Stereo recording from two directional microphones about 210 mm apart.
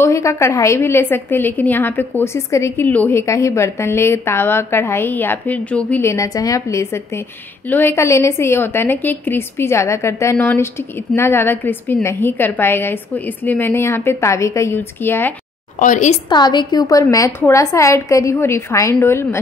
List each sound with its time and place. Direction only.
0.0 s a woman's voice: 15° left (ahead or behind)
15.8 s a woman's voice: 35° left (ahead or behind)
16.3 s a woman's voice: 20° left (ahead or behind)